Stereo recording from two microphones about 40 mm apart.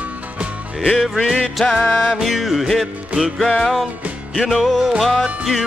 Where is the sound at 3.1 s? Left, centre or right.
Right.